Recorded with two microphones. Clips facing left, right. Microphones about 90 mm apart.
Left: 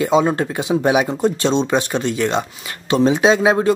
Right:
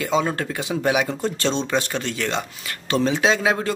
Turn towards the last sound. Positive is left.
turn(degrees=20)  # may be behind; listen again after turning